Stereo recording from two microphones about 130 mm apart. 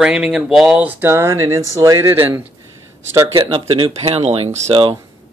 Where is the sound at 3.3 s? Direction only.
45° right (ahead or behind).